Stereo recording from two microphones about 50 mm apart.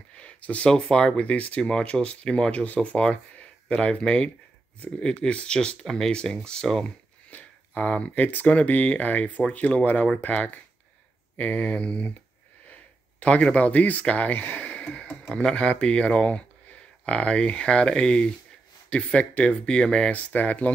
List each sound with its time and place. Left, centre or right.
0.2 s a sound: left
0.7 s speech: centre
7.2 s speech: left
13.2 s speech: left